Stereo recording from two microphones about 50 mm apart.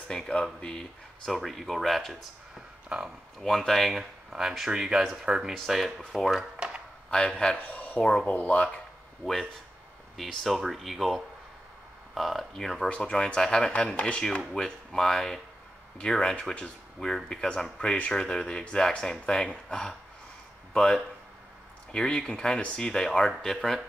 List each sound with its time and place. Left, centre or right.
0.3 s speech: centre
1.3 s speech: centre
2.9 s speech: right
3.3 s speech: centre
3.9 s speech: centre
5.9 s speech: centre
6.5 s a sound: centre
7.1 s speech: centre
7.6 s a sound: left
8.0 s speech: centre
8.3 s speech: left
9.2 s speech: centre; by 14.2 s left
14.5 s speech: centre